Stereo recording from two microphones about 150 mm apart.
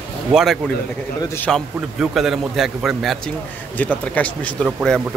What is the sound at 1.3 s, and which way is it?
Speech, 10° left (ahead or behind).